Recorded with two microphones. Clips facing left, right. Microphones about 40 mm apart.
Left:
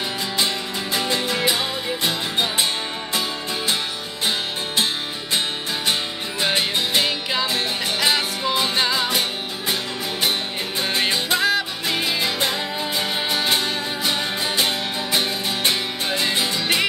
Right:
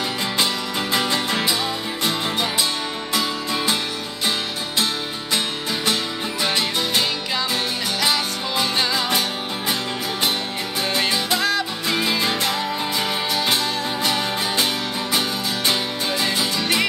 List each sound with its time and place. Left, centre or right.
0.4 s music: right
2.0 s music: left
6.4 s music: left
10.9 s music: left
11.4 s music: centre
13.3 s music: left